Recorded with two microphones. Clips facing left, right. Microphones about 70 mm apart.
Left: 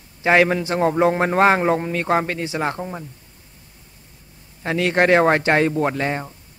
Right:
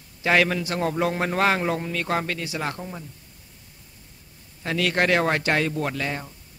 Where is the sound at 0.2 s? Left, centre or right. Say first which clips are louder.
Left 5 dB; left.